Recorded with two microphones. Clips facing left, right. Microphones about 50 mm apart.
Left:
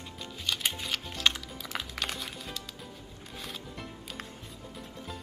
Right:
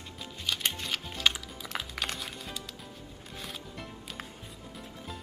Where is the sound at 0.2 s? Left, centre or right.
Centre.